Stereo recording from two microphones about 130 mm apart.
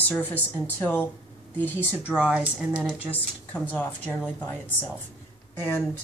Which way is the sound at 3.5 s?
10° left (ahead or behind).